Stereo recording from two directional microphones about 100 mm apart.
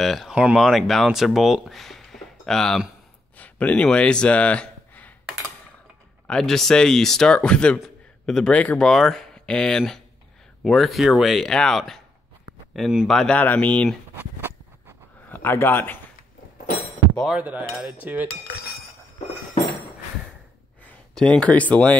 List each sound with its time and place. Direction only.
0.0 s speech: centre (ahead or behind)
6.2 s speech: 5° left (ahead or behind)
13.4 s speech: 15° left (ahead or behind)
14.1 s a sound: 20° right (ahead or behind)
15.2 s speech: 20° left (ahead or behind)
17.4 s speech: 15° right (ahead or behind)
21.1 s speech: 10° left (ahead or behind)